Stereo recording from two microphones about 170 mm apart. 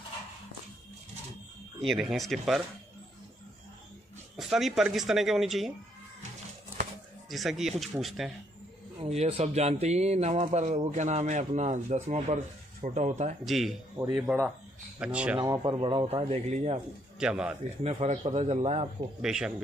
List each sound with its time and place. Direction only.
1.8 s speech: centre (ahead or behind)
4.4 s speech: centre (ahead or behind)
7.2 s speech: centre (ahead or behind)
9.0 s speech: 35° right (ahead or behind)
13.5 s speech: centre (ahead or behind)
15.3 s speech: 25° right (ahead or behind)
17.2 s speech: 5° right (ahead or behind)
18.0 s speech: 40° right (ahead or behind)
19.2 s speech: 5° right (ahead or behind)